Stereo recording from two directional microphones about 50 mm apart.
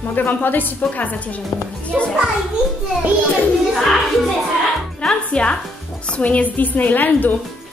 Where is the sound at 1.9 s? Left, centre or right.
Centre.